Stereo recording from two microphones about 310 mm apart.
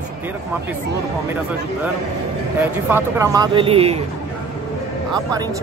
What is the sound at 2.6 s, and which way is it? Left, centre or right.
Speech, centre.